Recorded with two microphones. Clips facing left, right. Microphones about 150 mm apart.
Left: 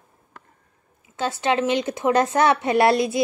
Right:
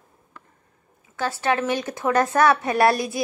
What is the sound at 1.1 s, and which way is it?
Speech, 20° left (ahead or behind).